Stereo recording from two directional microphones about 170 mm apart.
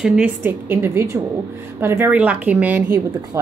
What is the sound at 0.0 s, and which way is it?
Speech, 5° right (ahead or behind).